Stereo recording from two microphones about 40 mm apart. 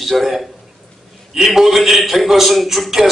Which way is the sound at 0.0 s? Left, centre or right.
Centre.